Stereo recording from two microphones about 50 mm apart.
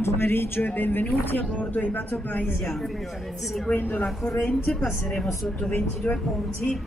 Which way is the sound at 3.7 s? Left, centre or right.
Left.